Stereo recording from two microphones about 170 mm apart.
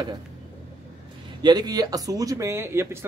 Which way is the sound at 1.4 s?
25° right (ahead or behind).